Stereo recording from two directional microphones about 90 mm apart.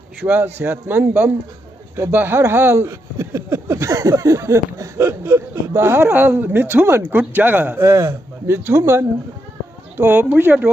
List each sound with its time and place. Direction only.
0.2 s speech: 20° right (ahead or behind)
10.0 s speech: 20° right (ahead or behind)